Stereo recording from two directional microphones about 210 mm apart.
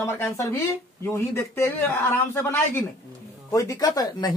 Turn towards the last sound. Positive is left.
turn(degrees=20)  # may be behind; listen again after turning